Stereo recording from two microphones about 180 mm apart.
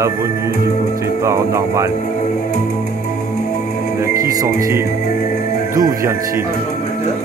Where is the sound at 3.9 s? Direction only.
20° right (ahead or behind).